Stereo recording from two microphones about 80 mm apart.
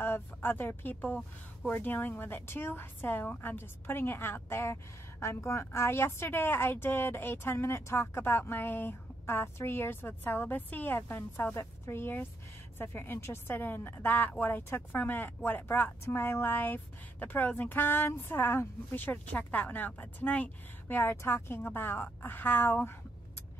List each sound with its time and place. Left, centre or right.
0.0 s a woman's voice: left